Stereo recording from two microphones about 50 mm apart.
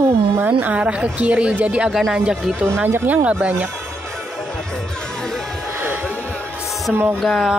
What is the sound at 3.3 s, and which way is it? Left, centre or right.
Speech, right.